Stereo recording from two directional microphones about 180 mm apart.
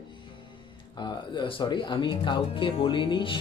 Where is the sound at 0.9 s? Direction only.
25° left (ahead or behind).